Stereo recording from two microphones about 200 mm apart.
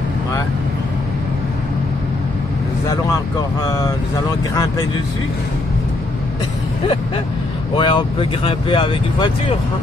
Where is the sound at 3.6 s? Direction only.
15° left (ahead or behind).